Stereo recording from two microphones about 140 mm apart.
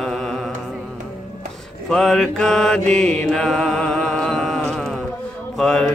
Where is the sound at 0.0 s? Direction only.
5° left (ahead or behind).